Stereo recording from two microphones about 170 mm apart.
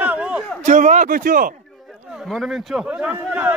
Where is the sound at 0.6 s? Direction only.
45° right (ahead or behind).